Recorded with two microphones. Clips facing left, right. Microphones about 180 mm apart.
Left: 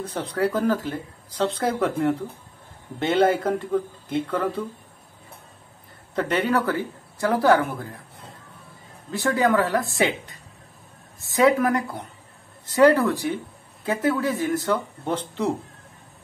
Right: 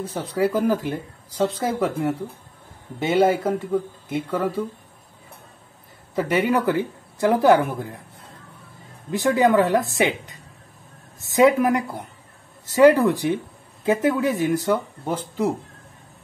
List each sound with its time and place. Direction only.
0.0 s speech: 5° right (ahead or behind)
6.1 s speech: 10° right (ahead or behind)
9.1 s speech: 15° right (ahead or behind)
12.8 s speech: 15° right (ahead or behind)
15.0 s speech: 5° right (ahead or behind)